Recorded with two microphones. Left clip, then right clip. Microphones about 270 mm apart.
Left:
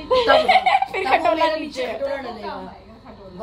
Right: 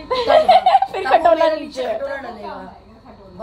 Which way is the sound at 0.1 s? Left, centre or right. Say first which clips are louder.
Right 2 dB; left.